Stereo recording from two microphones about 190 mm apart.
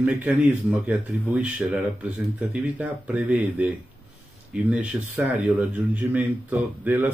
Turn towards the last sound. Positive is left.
turn(degrees=-10)  # may be behind; listen again after turning